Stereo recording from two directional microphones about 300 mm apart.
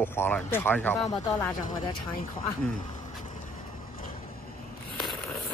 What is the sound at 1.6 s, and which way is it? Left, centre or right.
Speech, left.